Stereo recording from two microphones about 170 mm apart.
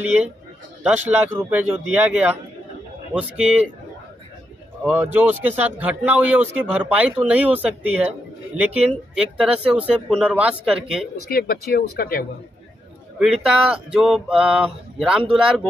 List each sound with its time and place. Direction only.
0.8 s speech: 10° right (ahead or behind)
4.8 s speech: 10° right (ahead or behind)
11.2 s speech: 60° left (ahead or behind)
13.2 s speech: 5° right (ahead or behind)